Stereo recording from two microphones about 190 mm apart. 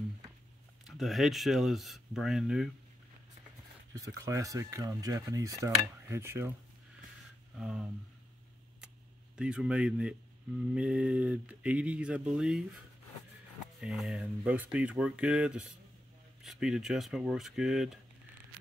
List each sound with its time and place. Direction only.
0.8 s speech: centre (ahead or behind)
3.9 s speech: 20° right (ahead or behind)
7.5 s speech: 5° right (ahead or behind)
9.4 s speech: 5° right (ahead or behind)